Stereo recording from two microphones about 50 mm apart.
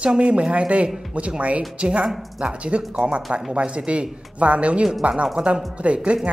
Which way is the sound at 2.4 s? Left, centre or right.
Right.